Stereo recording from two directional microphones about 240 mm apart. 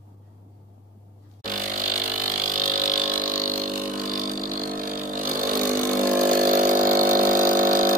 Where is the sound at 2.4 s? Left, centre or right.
Right.